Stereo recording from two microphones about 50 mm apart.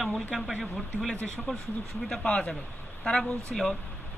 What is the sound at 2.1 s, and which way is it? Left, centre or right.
Speech, centre.